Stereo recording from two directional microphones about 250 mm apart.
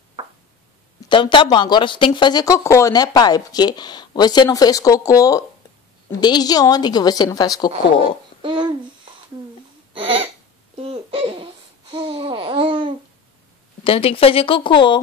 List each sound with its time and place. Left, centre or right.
1.0 s speech: centre
8.4 s a sound: centre
9.9 s hiccup: right
10.8 s babbling: right
13.8 s a woman's voice: left